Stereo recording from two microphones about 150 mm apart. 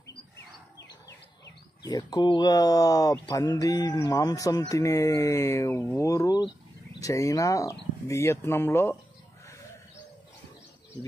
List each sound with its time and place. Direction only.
1.8 s speech: 25° left (ahead or behind)